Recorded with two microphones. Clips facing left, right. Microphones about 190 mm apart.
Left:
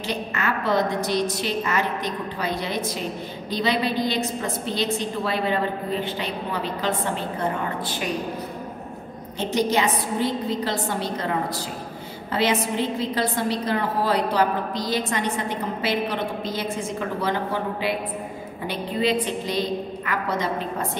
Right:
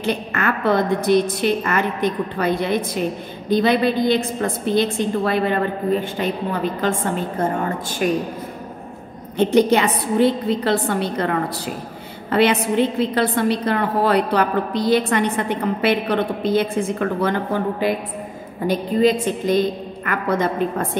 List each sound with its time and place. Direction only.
0.0 s a woman's voice: 55° right (ahead or behind)
9.4 s a woman's voice: 55° right (ahead or behind)